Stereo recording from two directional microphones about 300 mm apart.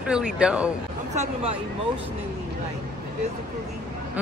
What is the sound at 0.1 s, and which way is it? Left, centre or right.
Speech, centre.